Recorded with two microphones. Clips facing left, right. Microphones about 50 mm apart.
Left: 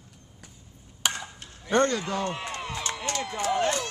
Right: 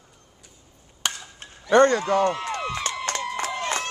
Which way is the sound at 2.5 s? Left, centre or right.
Right.